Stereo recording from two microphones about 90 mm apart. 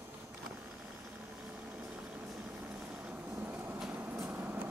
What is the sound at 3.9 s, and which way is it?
Vehicle, 25° right (ahead or behind).